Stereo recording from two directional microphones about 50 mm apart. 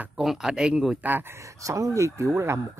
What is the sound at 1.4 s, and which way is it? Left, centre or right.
Speech, right.